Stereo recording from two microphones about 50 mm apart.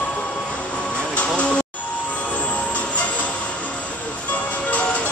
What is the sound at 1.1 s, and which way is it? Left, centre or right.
Music, left.